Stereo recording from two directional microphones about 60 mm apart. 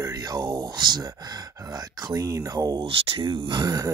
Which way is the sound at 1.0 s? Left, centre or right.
Right.